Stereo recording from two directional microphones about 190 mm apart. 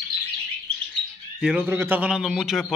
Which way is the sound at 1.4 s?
5° right (ahead or behind).